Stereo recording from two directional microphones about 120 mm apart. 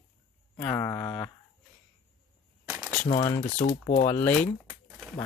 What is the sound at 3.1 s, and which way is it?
Speech, 70° left (ahead or behind).